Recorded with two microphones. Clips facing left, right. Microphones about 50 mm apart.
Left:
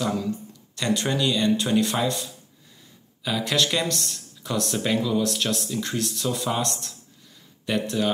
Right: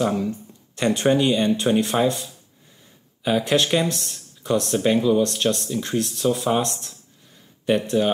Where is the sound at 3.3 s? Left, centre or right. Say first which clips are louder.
Right 5 dB; right.